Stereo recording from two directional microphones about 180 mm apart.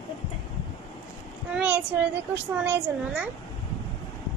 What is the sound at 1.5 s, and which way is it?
Child singing, 5° right (ahead or behind).